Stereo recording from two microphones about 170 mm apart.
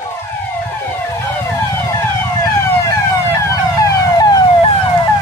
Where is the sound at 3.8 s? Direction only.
25° left (ahead or behind).